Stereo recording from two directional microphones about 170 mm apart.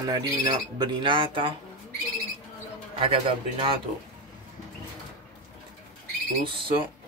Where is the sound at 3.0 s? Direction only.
30° right (ahead or behind).